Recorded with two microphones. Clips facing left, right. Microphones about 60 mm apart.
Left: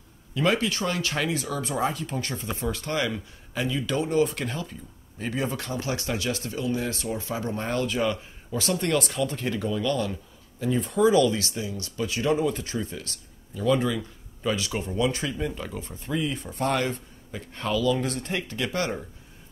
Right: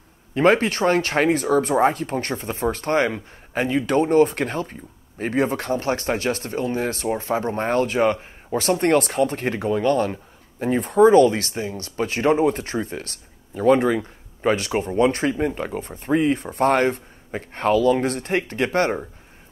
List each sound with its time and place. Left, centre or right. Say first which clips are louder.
0.3 s speech: right 7 dB; right